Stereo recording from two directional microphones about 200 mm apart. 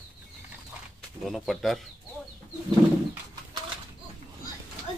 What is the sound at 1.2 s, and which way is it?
Speech, centre (ahead or behind).